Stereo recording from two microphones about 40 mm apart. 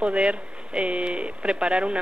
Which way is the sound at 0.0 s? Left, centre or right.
Right.